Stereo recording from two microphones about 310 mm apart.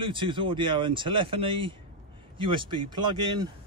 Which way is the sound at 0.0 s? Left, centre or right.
Centre.